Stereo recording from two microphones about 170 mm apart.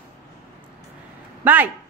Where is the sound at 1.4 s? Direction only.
10° right (ahead or behind).